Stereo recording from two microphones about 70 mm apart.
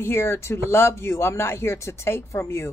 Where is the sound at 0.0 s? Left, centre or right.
Left.